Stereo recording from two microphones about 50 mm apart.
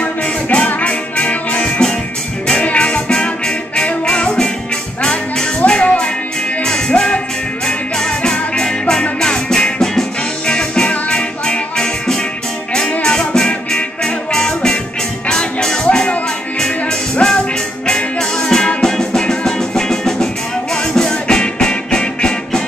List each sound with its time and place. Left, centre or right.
0.0 s music: left